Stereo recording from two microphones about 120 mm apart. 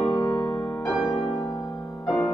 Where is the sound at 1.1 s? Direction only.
45° left (ahead or behind).